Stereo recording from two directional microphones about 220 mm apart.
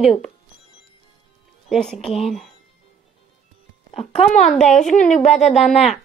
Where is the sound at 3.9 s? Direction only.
30° left (ahead or behind).